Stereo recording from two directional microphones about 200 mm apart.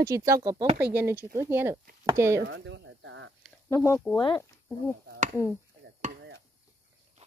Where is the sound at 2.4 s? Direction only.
65° right (ahead or behind).